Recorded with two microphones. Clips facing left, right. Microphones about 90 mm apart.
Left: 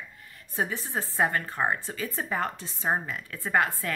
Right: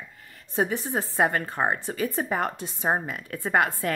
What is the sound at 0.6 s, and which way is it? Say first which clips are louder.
Speech: right 4 dB; 25° right (ahead or behind).